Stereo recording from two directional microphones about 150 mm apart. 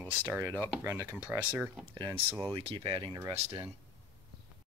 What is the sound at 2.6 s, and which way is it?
Speech, 35° right (ahead or behind).